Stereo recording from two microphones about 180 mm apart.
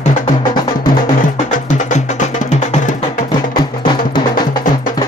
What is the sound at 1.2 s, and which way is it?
Music, 45° left (ahead or behind).